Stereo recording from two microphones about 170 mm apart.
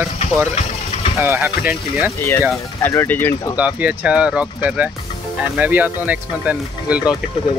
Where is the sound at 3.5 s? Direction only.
10° right (ahead or behind).